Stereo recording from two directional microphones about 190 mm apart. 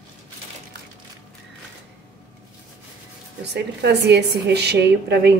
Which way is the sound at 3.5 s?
65° right (ahead or behind).